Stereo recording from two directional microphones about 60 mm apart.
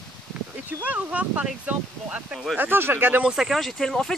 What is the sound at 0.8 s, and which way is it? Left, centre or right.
Speech, right.